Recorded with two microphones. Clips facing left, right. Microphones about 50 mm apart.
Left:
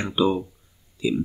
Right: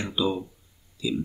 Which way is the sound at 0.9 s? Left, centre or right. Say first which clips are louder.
Left 4 dB; left.